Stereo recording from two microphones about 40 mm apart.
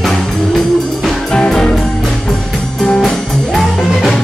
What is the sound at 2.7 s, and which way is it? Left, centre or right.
Music, left.